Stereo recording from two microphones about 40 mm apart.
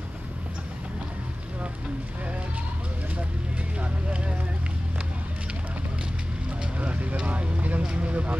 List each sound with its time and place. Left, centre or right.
3.8 s vehicle: right
6.8 s vehicle: right